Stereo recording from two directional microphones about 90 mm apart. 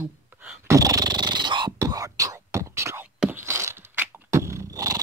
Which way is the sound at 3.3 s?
25° right (ahead or behind).